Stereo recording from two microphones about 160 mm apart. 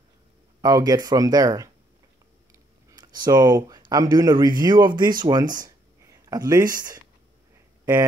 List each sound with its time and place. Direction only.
0.6 s speech: 20° right (ahead or behind)
2.9 s speech: 25° right (ahead or behind)